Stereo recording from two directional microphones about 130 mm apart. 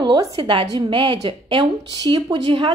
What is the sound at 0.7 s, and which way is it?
Speech, 40° right (ahead or behind).